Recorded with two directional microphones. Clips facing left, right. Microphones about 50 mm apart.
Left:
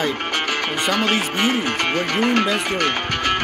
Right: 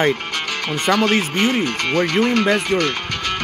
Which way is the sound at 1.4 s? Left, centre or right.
Left.